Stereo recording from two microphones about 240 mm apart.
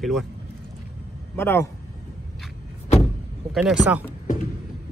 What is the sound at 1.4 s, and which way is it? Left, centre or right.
Speech, centre.